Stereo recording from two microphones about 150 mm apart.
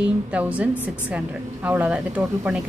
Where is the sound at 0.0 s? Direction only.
10° right (ahead or behind).